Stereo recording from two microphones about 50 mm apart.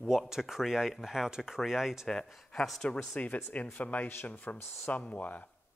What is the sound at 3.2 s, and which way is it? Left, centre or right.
Speech, left.